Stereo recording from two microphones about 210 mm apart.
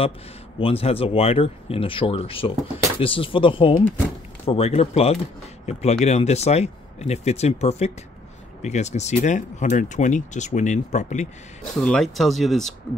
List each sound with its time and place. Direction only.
0.6 s speech: 25° left (ahead or behind)
11.6 s speech: 5° left (ahead or behind)